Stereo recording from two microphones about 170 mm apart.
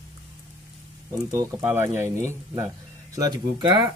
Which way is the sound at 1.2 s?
15° right (ahead or behind).